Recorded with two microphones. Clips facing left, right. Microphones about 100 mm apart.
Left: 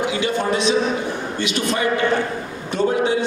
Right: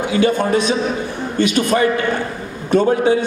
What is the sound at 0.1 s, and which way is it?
Speech, 45° right (ahead or behind).